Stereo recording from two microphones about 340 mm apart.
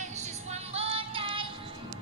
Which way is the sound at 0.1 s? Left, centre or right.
Centre.